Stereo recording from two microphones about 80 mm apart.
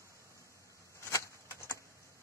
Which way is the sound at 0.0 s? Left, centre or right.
Right.